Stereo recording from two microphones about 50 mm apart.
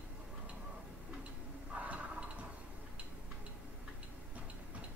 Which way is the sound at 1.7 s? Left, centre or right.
Right.